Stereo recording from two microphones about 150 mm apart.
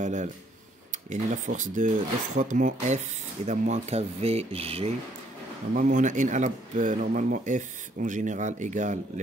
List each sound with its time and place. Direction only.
0.0 s speech: 55° right (ahead or behind)
5.8 s speech: 55° right (ahead or behind)